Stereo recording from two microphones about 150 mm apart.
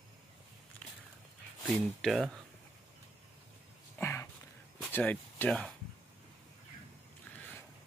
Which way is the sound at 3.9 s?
15° left (ahead or behind).